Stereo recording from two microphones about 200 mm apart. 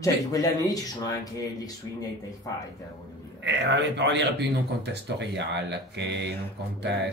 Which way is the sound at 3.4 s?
60° right (ahead or behind).